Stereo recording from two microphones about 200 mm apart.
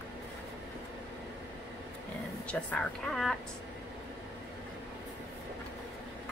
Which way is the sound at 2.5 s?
5° left (ahead or behind).